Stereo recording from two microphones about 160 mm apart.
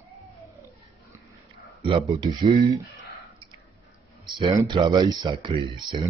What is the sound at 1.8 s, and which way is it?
Speech, 35° right (ahead or behind).